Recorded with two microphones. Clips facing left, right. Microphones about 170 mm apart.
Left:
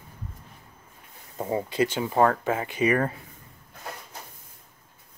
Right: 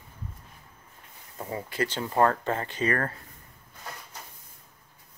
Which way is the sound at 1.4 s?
25° left (ahead or behind).